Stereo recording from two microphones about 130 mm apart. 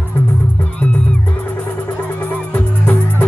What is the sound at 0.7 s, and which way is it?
Music, 10° left (ahead or behind).